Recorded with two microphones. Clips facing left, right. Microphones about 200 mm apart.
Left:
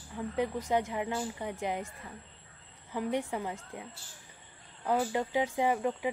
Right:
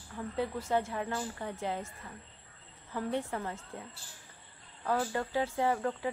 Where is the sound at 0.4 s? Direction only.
15° left (ahead or behind).